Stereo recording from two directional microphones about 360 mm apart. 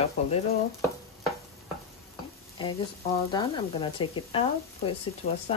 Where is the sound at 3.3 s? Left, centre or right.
Centre.